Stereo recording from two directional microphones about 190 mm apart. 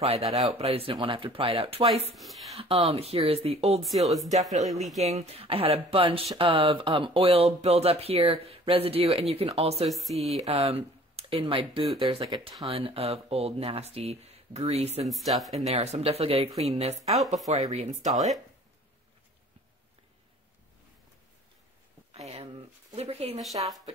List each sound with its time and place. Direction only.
0.0 s speech: 35° right (ahead or behind)
2.1 s speech: centre (ahead or behind)
2.5 s speech: 30° right (ahead or behind)
3.8 s speech: centre (ahead or behind)
5.0 s speech: 35° right (ahead or behind)
9.8 s speech: centre (ahead or behind)
10.2 s speech: 35° right (ahead or behind)
15.0 s speech: centre (ahead or behind)
15.7 s speech: 35° right (ahead or behind)
18.1 s speech: centre (ahead or behind)
22.1 s a sound: 35° right (ahead or behind)
23.4 s speech: centre (ahead or behind)